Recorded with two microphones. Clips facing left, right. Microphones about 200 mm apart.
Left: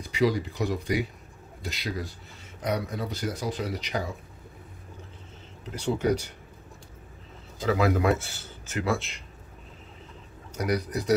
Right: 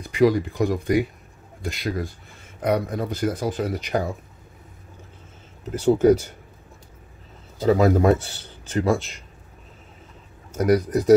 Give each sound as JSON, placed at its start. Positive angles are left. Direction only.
{"t": 0.1, "sound": "speech", "side_deg": -50}
{"t": 5.7, "sound": "speech", "side_deg": -45}
{"t": 7.6, "sound": "speech", "side_deg": -35}
{"t": 10.5, "sound": "speech", "side_deg": -50}